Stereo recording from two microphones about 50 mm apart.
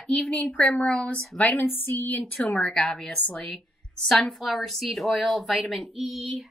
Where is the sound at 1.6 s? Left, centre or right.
Left.